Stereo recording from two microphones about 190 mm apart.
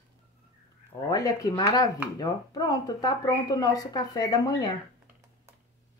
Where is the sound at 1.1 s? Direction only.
20° left (ahead or behind).